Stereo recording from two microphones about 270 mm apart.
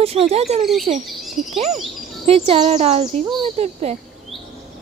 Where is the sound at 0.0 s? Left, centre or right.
Right.